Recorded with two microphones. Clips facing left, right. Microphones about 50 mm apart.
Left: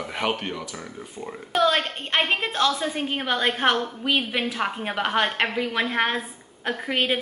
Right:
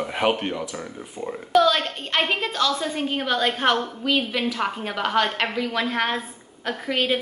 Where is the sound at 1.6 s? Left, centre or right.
Left.